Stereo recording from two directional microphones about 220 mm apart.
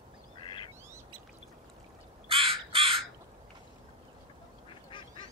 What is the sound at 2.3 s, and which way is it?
Crow, 25° right (ahead or behind).